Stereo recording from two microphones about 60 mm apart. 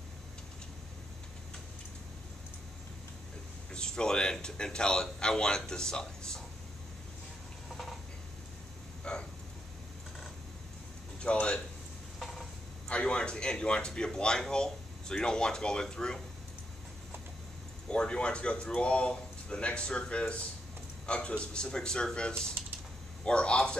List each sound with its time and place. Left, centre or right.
3.7 s a man's voice: centre
9.1 s vehicle: centre
11.1 s speech: centre
12.2 s a sound: centre
12.8 s speech: centre
17.8 s speech: centre
22.6 s typing: right
23.2 s speech: centre